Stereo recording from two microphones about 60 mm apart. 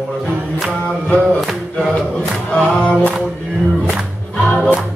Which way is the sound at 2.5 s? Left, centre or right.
Centre.